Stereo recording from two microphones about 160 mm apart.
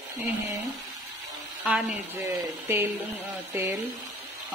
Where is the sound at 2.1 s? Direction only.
15° right (ahead or behind).